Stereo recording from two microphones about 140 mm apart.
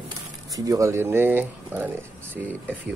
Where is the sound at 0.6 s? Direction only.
25° right (ahead or behind).